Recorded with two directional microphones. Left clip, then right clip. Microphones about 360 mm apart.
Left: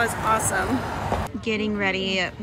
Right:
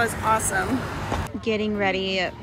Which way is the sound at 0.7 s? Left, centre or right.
Left.